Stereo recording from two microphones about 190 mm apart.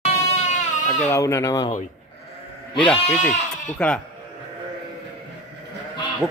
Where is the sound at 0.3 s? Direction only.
40° left (ahead or behind).